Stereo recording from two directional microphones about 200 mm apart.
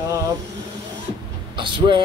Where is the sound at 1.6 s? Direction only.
25° right (ahead or behind).